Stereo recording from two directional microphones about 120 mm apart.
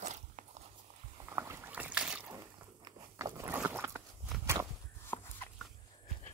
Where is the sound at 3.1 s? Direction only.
25° right (ahead or behind).